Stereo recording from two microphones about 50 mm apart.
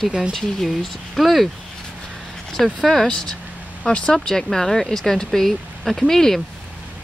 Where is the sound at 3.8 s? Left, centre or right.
Left.